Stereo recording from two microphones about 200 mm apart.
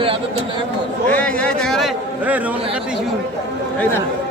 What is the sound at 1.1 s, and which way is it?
A man's voice, 5° left (ahead or behind).